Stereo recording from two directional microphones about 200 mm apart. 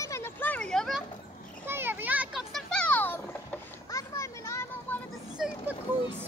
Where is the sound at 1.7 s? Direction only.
10° right (ahead or behind); by 3.2 s 10° left (ahead or behind).